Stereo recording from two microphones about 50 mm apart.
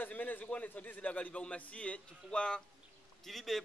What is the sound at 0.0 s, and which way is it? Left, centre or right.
A man's voice, left.